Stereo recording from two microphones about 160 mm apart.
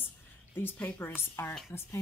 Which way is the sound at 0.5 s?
10° left (ahead or behind).